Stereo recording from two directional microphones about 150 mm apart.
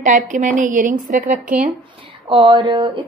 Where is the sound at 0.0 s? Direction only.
55° right (ahead or behind).